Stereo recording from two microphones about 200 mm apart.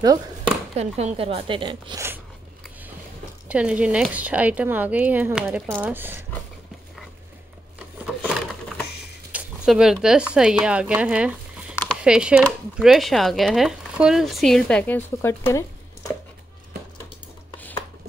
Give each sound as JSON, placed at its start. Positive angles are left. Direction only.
{"t": 0.7, "sound": "a woman's voice", "side_deg": -30}
{"t": 3.4, "sound": "a woman's voice", "side_deg": -5}
{"t": 8.0, "sound": "a sound", "side_deg": -5}
{"t": 9.3, "sound": "speech", "side_deg": -5}
{"t": 11.7, "sound": "a sound", "side_deg": 5}
{"t": 12.0, "sound": "speech", "side_deg": -5}